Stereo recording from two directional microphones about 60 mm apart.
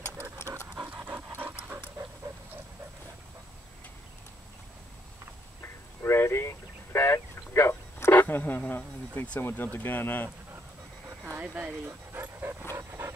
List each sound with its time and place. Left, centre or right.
0.7 s pant: centre
1.0 s pant: right
6.0 s a sound: left
8.1 s speech: left
9.4 s speech: left
11.5 s speech: right
12.7 s dog: right